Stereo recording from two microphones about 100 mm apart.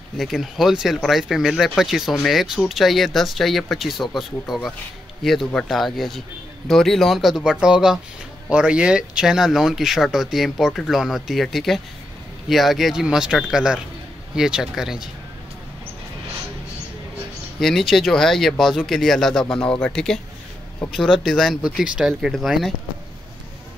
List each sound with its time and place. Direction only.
0.2 s speech: centre (ahead or behind)
17.6 s speech: 5° left (ahead or behind)